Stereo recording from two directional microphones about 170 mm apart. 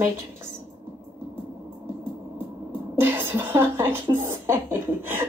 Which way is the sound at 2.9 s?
10° right (ahead or behind).